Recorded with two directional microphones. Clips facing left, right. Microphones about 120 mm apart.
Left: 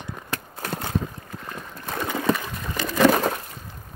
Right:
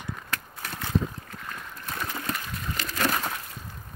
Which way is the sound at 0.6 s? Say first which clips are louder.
Left 6 dB; 45° left (ahead or behind).